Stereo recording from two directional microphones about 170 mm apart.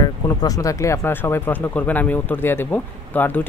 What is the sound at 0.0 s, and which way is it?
Speech, 20° left (ahead or behind).